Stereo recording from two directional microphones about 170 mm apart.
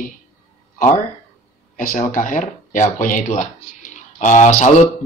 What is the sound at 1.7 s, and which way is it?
Speech, 50° left (ahead or behind).